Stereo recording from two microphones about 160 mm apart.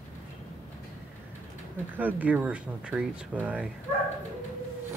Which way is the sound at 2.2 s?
10° right (ahead or behind).